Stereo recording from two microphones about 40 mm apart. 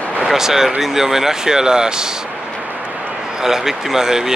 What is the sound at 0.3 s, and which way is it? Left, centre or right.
Speech, centre.